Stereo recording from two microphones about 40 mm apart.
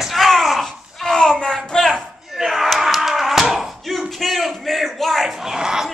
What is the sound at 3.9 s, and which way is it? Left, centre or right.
Crowd, centre.